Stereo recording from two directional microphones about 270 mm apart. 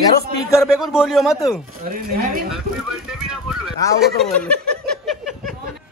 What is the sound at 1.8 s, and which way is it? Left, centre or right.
Speech, right.